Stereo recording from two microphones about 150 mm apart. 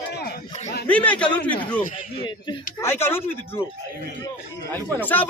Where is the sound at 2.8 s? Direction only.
15° left (ahead or behind).